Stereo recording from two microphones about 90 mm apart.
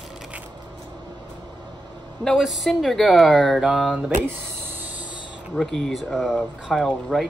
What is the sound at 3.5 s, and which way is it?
Speech, 10° right (ahead or behind).